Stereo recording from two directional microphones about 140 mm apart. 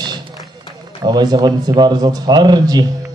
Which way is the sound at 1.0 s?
30° right (ahead or behind).